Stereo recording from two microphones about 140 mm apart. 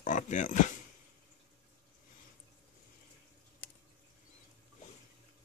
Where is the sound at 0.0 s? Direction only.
65° left (ahead or behind).